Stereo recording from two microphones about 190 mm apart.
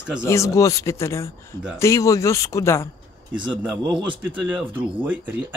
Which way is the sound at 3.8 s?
25° right (ahead or behind).